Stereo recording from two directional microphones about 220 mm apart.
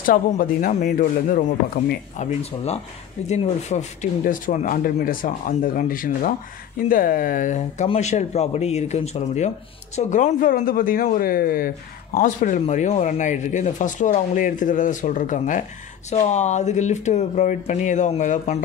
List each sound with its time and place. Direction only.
0.0 s speech: 40° left (ahead or behind)